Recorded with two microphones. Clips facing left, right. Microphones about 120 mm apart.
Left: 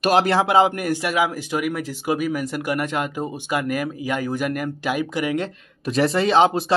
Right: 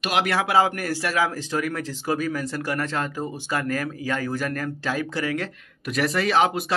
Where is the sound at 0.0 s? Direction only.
35° left (ahead or behind).